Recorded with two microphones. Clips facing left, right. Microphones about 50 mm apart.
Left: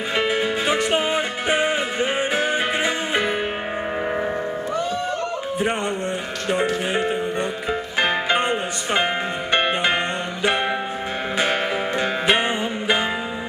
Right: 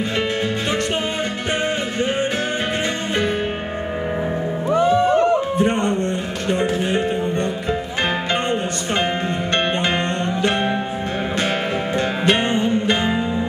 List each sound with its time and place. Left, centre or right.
0.2 s music: centre
4.7 s music: right
5.6 s music: centre
12.3 s music: centre